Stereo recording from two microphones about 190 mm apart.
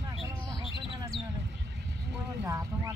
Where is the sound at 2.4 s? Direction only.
15° right (ahead or behind).